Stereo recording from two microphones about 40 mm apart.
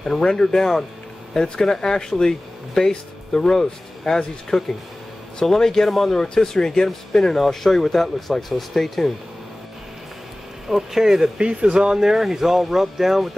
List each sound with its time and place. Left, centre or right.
0.0 s speech: centre
6.2 s speech: centre
10.8 s speech: centre
11.3 s speech: right
12.0 s speech: centre